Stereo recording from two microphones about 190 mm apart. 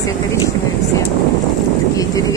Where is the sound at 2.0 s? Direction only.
20° left (ahead or behind).